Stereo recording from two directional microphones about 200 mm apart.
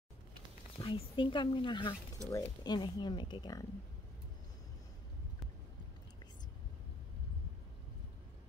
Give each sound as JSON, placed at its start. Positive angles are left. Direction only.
{"t": 0.7, "sound": "speech", "side_deg": 25}